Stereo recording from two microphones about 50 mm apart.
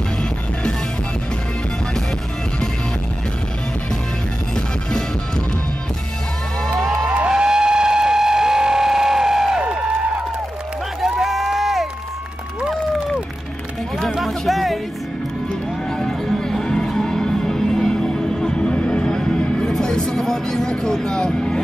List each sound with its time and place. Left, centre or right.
4.6 s music: centre
6.6 s music: centre
7.2 s vehicle: centre
9.6 s a sound: right
11.0 s a sound: centre
14.2 s music: centre
16.0 s music: centre